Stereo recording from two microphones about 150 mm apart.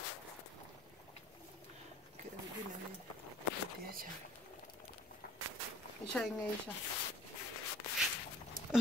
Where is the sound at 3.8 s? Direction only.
75° right (ahead or behind).